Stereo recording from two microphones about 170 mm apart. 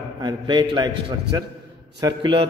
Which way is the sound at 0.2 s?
25° right (ahead or behind).